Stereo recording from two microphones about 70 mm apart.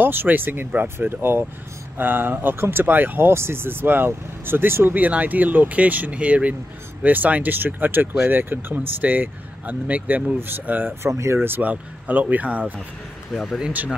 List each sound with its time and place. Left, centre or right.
0.0 s speech: right
13.3 s speech: centre
13.6 s speech: centre